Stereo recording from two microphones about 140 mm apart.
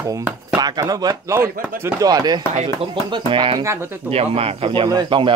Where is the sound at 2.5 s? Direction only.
50° right (ahead or behind).